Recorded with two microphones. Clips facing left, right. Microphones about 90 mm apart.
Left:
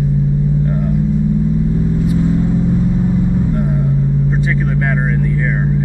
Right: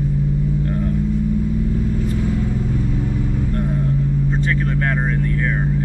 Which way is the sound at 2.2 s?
25° left (ahead or behind).